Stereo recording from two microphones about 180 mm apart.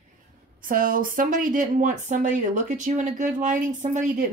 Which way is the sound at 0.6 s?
50° right (ahead or behind).